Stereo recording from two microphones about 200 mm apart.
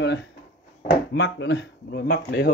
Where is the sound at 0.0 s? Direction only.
65° left (ahead or behind).